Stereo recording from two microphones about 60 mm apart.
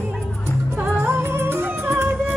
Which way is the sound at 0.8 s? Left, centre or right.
Right.